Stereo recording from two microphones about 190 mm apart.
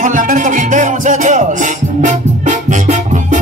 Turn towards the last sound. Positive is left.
turn(degrees=-40)  # may be behind; listen again after turning